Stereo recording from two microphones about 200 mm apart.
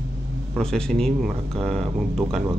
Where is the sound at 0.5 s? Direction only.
5° left (ahead or behind).